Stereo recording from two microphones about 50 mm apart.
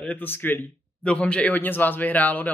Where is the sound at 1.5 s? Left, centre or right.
Left.